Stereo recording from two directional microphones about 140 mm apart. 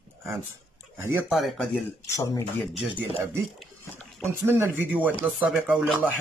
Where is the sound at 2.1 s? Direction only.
25° left (ahead or behind).